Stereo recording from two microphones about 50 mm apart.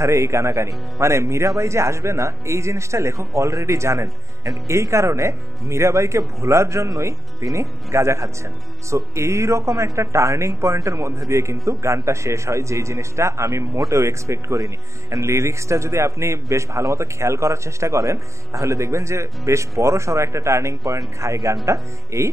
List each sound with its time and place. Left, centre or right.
0.0 s a man's voice: right